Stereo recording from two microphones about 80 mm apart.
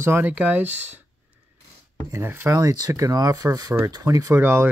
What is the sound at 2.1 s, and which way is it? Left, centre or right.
Speech, right.